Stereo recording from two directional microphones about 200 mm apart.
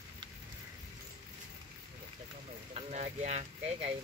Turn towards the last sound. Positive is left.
turn(degrees=-30)  # may be behind; listen again after turning